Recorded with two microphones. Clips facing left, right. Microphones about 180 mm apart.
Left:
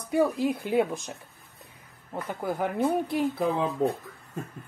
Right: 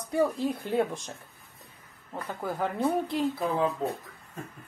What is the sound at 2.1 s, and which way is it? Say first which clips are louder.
Speech: left 2 dB; 15° left (ahead or behind).